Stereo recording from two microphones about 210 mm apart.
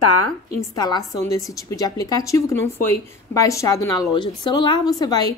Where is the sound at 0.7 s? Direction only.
20° left (ahead or behind).